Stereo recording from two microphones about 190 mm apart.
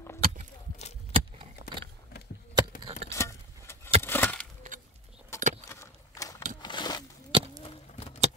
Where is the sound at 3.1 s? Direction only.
15° left (ahead or behind).